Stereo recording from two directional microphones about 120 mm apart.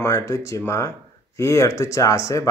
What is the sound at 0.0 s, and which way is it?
Speech, 25° left (ahead or behind).